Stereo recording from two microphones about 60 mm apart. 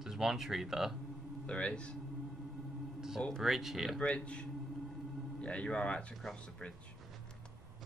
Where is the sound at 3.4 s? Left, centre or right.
Centre.